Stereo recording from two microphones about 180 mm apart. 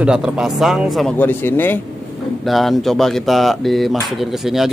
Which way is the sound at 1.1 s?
10° left (ahead or behind).